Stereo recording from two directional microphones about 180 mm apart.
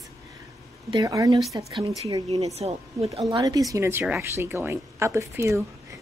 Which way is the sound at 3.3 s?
20° right (ahead or behind).